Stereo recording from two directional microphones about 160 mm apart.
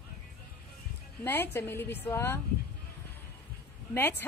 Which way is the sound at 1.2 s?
15° left (ahead or behind).